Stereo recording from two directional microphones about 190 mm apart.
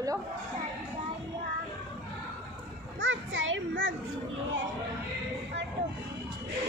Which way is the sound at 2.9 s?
80° right.